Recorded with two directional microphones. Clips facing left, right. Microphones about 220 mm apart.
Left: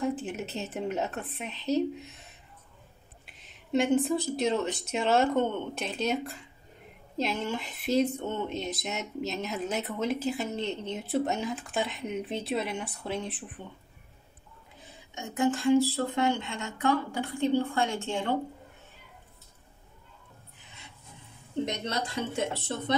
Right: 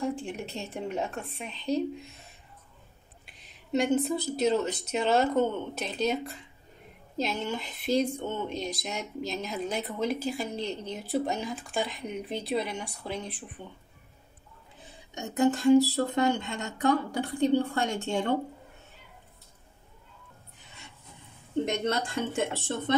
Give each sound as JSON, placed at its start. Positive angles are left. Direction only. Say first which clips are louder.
{"t": 0.0, "sound": "speech", "louder": "left 1 dB", "side_deg": 5}
{"t": 3.7, "sound": "speech", "louder": "left 1 dB", "side_deg": 0}
{"t": 15.4, "sound": "speech", "louder": "right 3 dB", "side_deg": -40}
{"t": 21.6, "sound": "speech", "louder": "right 4 dB", "side_deg": -50}